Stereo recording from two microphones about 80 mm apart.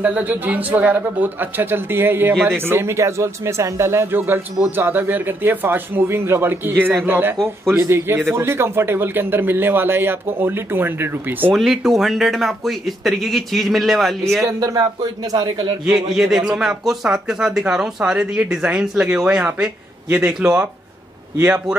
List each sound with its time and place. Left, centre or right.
0.0 s speech: right
11.5 s a man's voice: centre
14.4 s speech: right
15.3 s a man's voice: right
15.9 s speech: centre